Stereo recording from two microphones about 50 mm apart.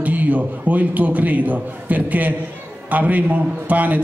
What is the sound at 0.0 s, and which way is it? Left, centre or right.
A man's voice, right.